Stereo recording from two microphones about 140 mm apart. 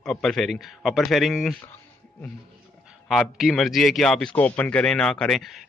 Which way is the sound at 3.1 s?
Centre (ahead or behind).